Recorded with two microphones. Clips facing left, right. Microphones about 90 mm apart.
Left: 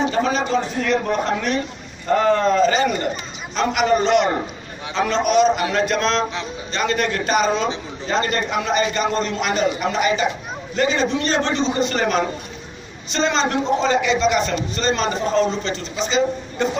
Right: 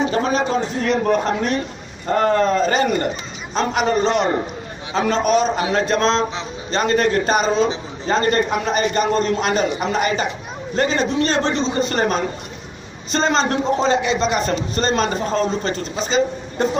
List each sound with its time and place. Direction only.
0.1 s a man's voice: 40° right (ahead or behind)